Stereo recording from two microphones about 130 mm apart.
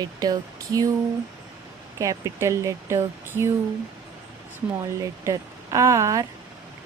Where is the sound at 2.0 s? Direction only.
25° right (ahead or behind).